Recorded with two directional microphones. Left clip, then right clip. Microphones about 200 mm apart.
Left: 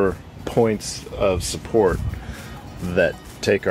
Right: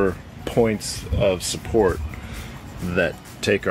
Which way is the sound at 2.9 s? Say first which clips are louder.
Left 3 dB; centre (ahead or behind).